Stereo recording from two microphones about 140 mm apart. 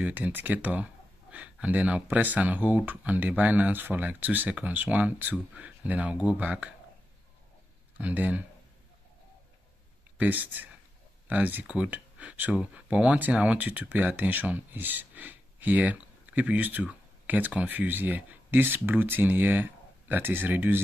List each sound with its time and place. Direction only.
0.0 s speech: 10° right (ahead or behind)
8.0 s speech: 10° right (ahead or behind)
10.1 s speech: 10° right (ahead or behind)